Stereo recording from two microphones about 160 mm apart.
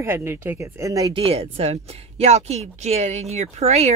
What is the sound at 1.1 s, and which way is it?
Speech, 35° right (ahead or behind).